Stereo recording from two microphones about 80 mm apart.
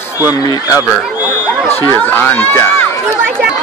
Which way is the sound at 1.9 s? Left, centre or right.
Left.